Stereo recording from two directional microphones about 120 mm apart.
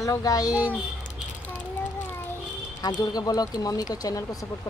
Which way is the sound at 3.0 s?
35° left (ahead or behind).